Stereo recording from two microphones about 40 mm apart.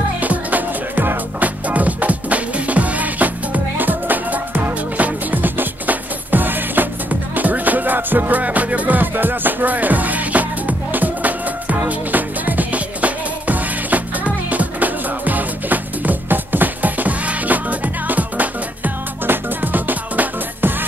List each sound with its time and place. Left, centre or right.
0.2 s music: right
19.2 s music: right